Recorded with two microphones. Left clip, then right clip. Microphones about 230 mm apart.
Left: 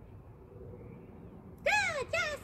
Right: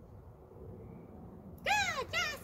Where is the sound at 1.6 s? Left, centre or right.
Right.